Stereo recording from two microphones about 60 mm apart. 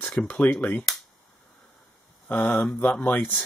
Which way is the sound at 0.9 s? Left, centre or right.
Centre.